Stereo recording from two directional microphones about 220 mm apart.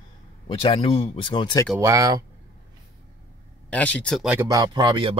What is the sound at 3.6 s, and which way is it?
Speech, 5° left (ahead or behind).